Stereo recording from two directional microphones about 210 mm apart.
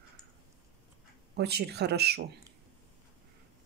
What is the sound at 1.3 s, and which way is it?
Speech, 50° right (ahead or behind).